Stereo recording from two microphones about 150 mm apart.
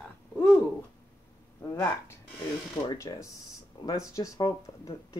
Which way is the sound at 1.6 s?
15° left (ahead or behind).